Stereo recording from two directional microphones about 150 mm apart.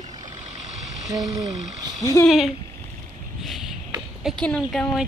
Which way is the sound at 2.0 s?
20° left (ahead or behind).